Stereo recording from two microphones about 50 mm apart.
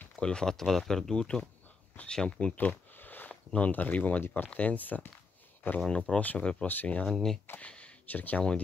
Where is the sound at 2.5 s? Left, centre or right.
Left.